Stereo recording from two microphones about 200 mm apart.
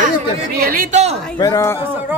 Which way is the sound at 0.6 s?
45° right (ahead or behind).